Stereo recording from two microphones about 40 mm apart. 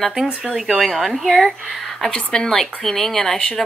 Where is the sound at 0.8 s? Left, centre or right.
Centre.